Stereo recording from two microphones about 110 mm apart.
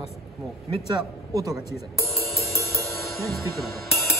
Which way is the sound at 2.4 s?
25° left (ahead or behind).